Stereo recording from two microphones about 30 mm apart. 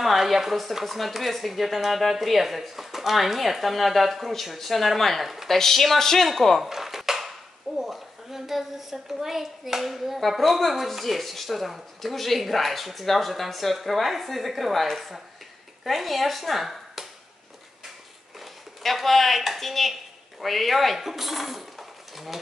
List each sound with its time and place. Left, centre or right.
0.0 s a child's voice: centre
5.2 s speech: centre
5.5 s speech: centre
6.6 s dishes: centre
7.7 s a child's voice: centre
18.8 s a child's voice: centre